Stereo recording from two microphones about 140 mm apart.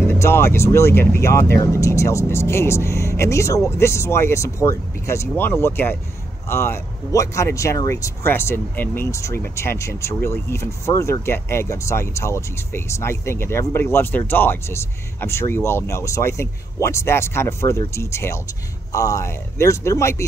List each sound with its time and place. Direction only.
0.0 s speech: 15° left (ahead or behind)